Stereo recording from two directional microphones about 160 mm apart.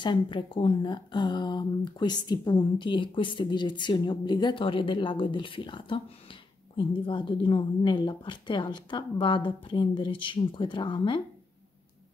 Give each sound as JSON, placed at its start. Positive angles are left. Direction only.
{"t": 0.0, "sound": "speech", "side_deg": 30}